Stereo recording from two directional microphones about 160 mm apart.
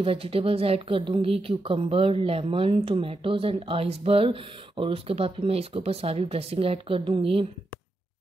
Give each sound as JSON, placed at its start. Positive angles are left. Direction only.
{"t": 0.0, "sound": "speech", "side_deg": -35}